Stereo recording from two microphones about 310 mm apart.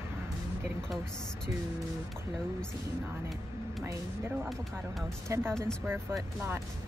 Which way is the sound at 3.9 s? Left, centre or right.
Centre.